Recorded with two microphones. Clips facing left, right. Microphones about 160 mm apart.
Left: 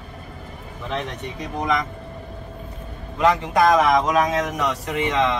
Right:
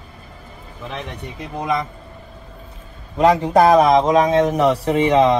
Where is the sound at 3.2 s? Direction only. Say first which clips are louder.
Right 4 dB; 40° right (ahead or behind).